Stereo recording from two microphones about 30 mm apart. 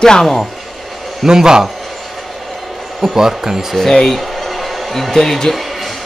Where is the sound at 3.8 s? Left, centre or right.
Centre.